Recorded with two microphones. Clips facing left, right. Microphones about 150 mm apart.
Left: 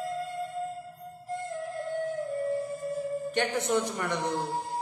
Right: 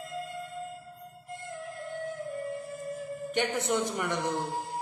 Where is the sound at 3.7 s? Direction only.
15° right (ahead or behind).